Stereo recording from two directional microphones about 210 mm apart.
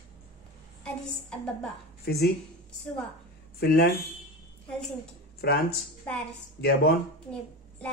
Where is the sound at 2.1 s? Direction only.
45° left (ahead or behind).